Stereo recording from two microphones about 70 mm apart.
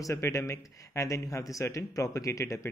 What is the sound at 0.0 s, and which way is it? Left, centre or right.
Speech, left.